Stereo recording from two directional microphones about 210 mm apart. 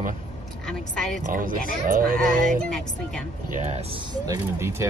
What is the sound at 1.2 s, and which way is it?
Speech, 40° right (ahead or behind).